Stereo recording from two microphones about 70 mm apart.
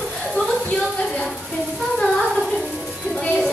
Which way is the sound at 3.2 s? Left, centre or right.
Centre.